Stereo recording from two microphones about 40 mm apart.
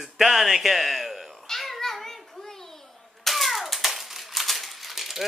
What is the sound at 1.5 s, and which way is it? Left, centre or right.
Children playing, centre.